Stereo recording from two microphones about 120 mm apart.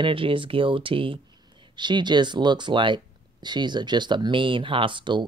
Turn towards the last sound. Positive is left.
turn(degrees=-40)  # may be behind; listen again after turning